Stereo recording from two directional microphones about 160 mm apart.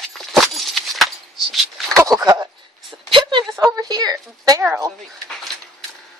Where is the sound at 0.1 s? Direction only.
Centre (ahead or behind).